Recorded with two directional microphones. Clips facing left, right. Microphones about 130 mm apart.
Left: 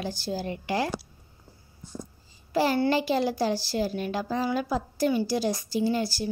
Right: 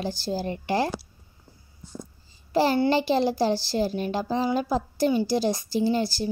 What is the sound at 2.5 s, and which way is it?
A child's voice, 30° right (ahead or behind).